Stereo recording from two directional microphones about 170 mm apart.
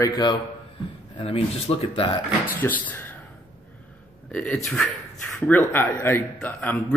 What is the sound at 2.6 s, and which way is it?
Speech, 10° left (ahead or behind).